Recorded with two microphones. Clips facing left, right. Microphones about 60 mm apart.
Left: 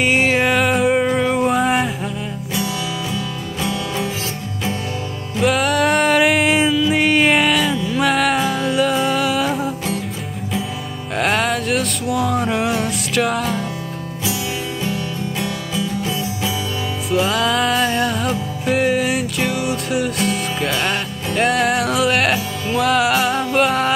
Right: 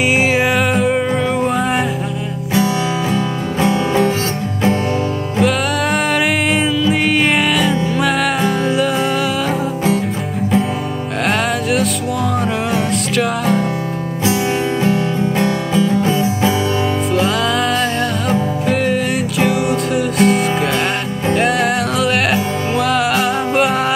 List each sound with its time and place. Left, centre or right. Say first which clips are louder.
0.0 s music: right 2 dB; centre
2.5 s music: right 8 dB; right
5.4 s music: even; centre
11.2 s music: right 1 dB; centre
14.8 s music: right 8 dB; right
17.1 s music: left 2 dB; centre